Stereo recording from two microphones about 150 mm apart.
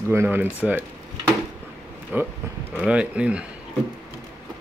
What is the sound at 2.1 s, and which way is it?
Speech, 10° right (ahead or behind).